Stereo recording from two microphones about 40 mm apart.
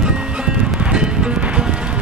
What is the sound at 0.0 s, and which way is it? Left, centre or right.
Music, right.